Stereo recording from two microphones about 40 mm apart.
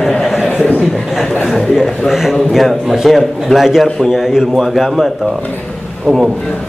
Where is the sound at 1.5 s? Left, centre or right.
Centre.